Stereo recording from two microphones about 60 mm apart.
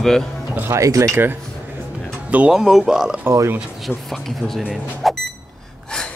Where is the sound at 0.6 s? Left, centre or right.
Right.